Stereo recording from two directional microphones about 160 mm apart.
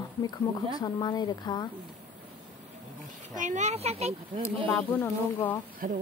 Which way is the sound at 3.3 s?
50° right (ahead or behind).